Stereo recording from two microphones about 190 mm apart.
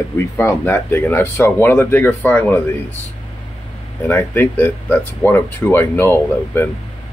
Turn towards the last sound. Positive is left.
turn(degrees=10)  # may be behind; listen again after turning